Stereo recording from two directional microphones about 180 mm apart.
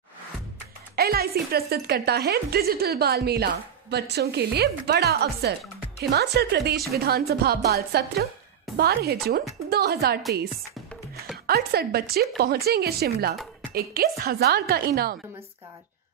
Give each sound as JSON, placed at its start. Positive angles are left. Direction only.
{"t": 0.9, "sound": "a woman's voice", "side_deg": -60}
{"t": 11.4, "sound": "a woman's voice", "side_deg": -60}